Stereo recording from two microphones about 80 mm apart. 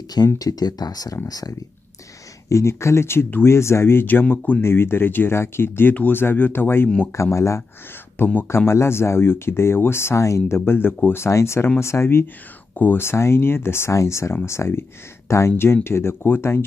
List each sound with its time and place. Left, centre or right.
0.4 s speech: left
2.5 s speech: left
10.6 s speech: left